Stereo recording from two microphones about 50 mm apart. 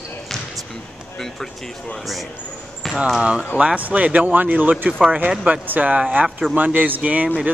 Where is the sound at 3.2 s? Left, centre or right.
Right.